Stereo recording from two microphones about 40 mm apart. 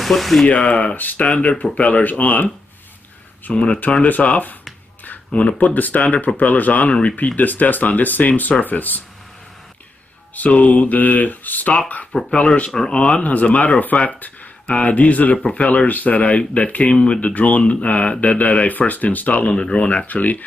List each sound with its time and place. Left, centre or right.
0.0 s speech: centre
0.5 s speech: left
0.9 s speech: left
1.2 s speech: left
5.8 s speech: left
7.3 s speech: left
10.3 s speech: left
12.1 s speech: centre
13.1 s speech: left
17.2 s speech: left
19.5 s speech: left
20.1 s speech: left